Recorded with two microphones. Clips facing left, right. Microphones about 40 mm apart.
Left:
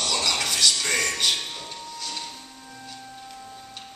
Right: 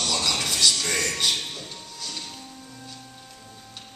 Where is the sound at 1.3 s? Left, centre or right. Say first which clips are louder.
Left 1 dB; left.